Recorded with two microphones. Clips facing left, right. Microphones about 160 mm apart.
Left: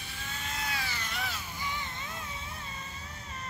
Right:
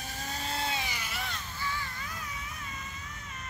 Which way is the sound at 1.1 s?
Centre (ahead or behind).